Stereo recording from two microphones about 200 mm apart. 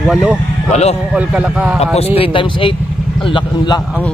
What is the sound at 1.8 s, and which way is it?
Speech, 30° left (ahead or behind).